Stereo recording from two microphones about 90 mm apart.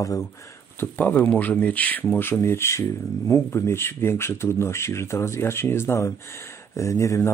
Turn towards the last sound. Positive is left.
turn(degrees=35)  # may be behind; listen again after turning